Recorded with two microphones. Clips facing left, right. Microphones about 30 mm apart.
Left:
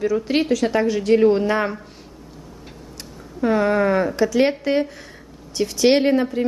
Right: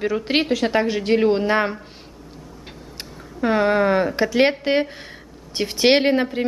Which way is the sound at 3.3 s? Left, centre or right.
Right.